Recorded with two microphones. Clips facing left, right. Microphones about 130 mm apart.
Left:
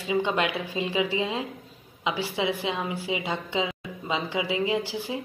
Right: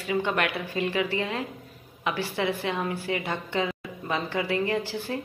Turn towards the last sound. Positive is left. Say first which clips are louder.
# left 1 dB
turn(degrees=10)  # may be behind; listen again after turning